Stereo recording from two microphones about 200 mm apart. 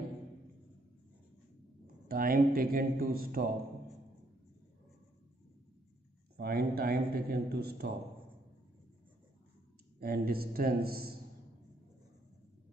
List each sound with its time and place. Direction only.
2.0 s a man's voice: 45° right (ahead or behind)
6.3 s a man's voice: 50° right (ahead or behind)
9.9 s a man's voice: 50° right (ahead or behind)